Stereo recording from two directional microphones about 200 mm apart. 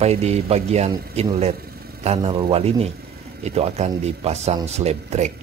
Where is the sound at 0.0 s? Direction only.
30° right (ahead or behind).